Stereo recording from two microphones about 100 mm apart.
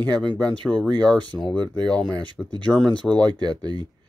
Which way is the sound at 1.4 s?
50° right (ahead or behind).